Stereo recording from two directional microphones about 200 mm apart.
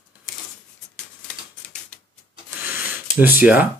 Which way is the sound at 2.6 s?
10° right (ahead or behind).